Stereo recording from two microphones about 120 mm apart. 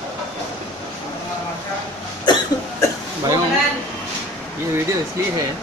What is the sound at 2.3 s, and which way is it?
Cough, 40° left (ahead or behind).